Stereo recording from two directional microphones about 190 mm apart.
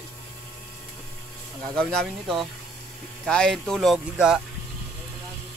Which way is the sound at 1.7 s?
5° left (ahead or behind).